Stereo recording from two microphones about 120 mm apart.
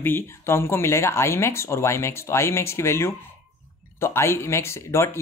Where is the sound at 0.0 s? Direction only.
20° left (ahead or behind).